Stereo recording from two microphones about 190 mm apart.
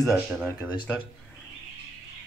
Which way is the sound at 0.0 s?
Centre (ahead or behind).